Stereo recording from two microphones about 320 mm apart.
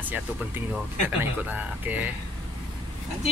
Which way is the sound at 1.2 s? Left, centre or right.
Centre.